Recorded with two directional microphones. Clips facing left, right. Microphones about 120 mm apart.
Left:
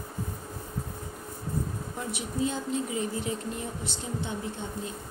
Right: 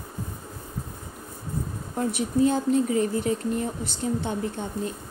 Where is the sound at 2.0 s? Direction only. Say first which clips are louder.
Right 9 dB; 50° right (ahead or behind).